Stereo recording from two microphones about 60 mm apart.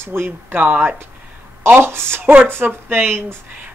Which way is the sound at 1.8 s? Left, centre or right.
Right.